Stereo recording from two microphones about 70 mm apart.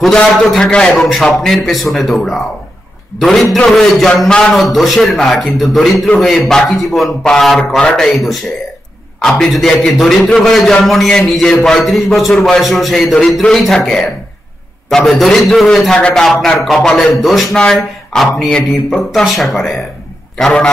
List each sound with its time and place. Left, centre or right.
0.0 s a man's voice: centre
16.0 s speech: centre
16.3 s a man's voice: centre
17.6 s speech: centre